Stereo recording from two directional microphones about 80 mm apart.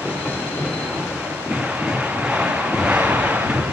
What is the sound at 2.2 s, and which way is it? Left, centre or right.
Wind noise, centre.